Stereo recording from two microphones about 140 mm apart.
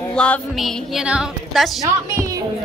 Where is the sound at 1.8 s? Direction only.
20° right (ahead or behind).